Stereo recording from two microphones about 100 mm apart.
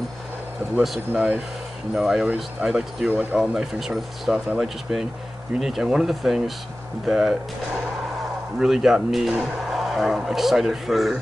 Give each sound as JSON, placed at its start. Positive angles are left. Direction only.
{"t": 1.1, "sound": "speech", "side_deg": -10}
{"t": 3.1, "sound": "speech", "side_deg": -15}
{"t": 3.3, "sound": "speech", "side_deg": -5}
{"t": 5.6, "sound": "speech", "side_deg": -5}